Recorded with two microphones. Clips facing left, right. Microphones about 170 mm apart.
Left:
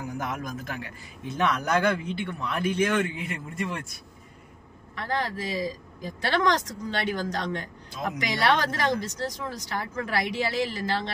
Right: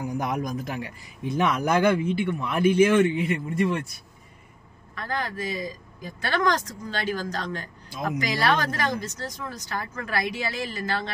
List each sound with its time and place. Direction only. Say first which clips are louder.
0.2 s a man's voice: right 5 dB; 15° right (ahead or behind); by 3.7 s centre (ahead or behind)
4.9 s speech: left 1 dB; 25° left (ahead or behind)